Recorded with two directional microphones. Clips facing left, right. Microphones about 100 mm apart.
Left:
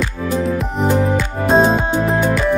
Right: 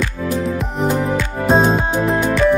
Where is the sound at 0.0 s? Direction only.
Centre (ahead or behind).